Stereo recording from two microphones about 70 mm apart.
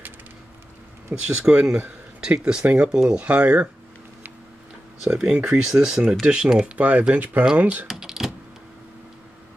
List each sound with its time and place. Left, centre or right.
1.1 s speech: right
2.2 s speech: centre
5.0 s speech: centre
7.8 s typing: centre